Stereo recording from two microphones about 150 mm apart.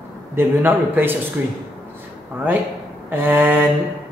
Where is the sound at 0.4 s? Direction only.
15° right (ahead or behind).